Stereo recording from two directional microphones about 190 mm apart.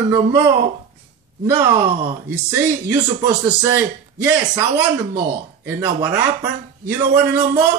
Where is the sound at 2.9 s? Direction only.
20° right (ahead or behind).